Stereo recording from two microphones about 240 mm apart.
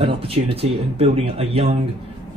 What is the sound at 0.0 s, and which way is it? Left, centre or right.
Speech, right.